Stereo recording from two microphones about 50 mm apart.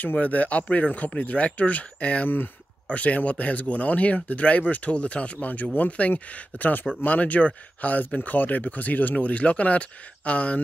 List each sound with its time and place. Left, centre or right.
0.0 s speech: left
2.2 s speech: left